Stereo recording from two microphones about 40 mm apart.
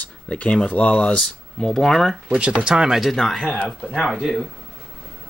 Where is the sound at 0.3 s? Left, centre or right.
Left.